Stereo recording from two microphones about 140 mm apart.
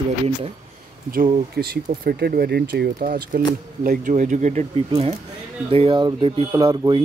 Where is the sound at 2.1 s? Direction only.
90° right.